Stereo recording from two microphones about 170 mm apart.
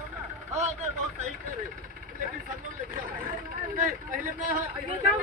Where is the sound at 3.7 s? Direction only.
50° right (ahead or behind).